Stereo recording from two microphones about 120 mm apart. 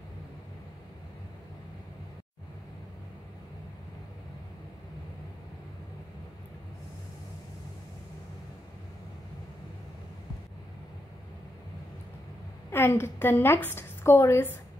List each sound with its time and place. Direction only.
12.7 s a woman's voice: 20° left (ahead or behind)